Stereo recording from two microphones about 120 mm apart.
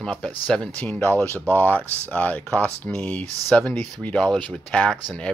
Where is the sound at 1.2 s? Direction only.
25° right (ahead or behind).